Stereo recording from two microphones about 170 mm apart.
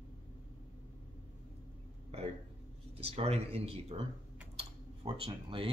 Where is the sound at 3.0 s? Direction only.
35° right (ahead or behind).